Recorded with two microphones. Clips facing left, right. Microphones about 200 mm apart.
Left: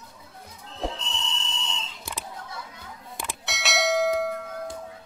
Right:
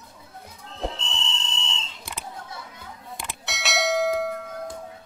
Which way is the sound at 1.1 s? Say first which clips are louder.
Even; 25° right (ahead or behind).